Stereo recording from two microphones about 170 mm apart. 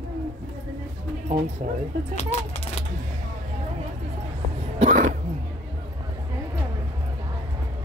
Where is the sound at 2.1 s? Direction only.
40° left (ahead or behind).